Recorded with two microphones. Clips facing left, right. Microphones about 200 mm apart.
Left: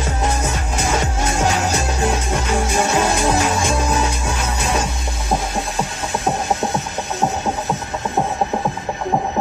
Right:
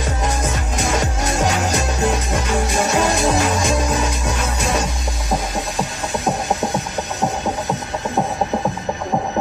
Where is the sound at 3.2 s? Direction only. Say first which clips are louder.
Even; centre (ahead or behind).